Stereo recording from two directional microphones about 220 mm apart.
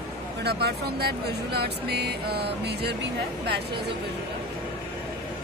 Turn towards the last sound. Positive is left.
turn(degrees=-50)  # may be behind; listen again after turning